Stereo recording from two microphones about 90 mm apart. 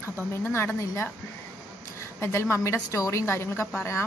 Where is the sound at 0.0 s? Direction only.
30° left (ahead or behind).